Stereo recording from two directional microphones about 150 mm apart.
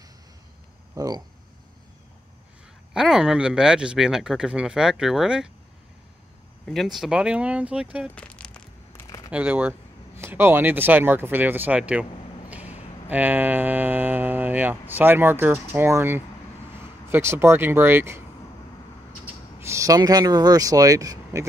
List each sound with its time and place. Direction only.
0.9 s speech: 25° right (ahead or behind)
2.9 s speech: 5° right (ahead or behind)
6.6 s speech: centre (ahead or behind)
8.1 s a sound: 10° left (ahead or behind)
9.3 s speech: 10° right (ahead or behind)
12.4 s a sound: 10° right (ahead or behind)
13.1 s speech: 10° right (ahead or behind)
19.6 s speech: 20° right (ahead or behind)